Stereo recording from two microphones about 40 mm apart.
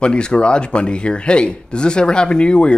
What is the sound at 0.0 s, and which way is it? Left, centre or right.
Speech, left.